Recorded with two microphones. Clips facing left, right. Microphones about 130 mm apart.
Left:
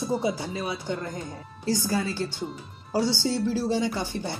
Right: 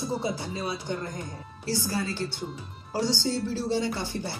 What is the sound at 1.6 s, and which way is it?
Speech, 15° left (ahead or behind).